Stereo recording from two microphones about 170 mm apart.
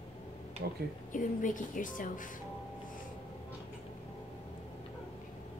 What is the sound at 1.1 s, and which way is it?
Speech, 50° left (ahead or behind).